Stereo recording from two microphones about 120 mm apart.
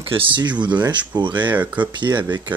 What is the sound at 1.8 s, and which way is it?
Speech, 40° right (ahead or behind).